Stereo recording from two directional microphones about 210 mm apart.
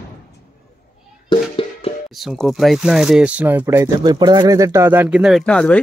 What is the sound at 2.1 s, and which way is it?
Speech, centre (ahead or behind).